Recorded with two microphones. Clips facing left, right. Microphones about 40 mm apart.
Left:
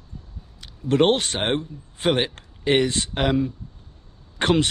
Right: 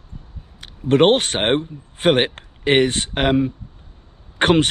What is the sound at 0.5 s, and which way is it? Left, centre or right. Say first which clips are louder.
A man's voice: right 4 dB; right.